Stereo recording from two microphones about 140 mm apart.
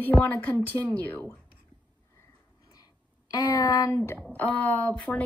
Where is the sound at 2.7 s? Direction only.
25° left (ahead or behind).